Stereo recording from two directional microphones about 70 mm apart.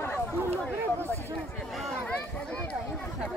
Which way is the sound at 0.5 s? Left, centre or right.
Left.